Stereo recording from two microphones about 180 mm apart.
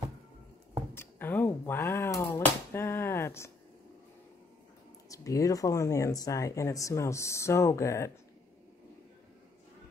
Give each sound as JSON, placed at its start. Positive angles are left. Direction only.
{"t": 0.9, "sound": "speech", "side_deg": 10}
{"t": 5.1, "sound": "speech", "side_deg": 20}